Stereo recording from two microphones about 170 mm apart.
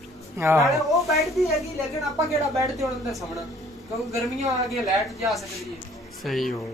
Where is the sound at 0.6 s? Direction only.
Centre (ahead or behind).